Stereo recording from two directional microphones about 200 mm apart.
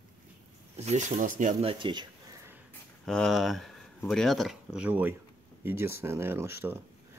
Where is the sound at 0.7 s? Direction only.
35° right (ahead or behind).